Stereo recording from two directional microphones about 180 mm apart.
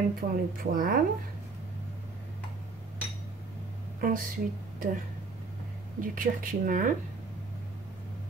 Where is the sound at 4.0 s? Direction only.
50° right (ahead or behind).